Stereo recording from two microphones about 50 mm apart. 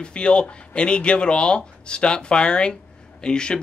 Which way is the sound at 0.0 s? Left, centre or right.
Centre.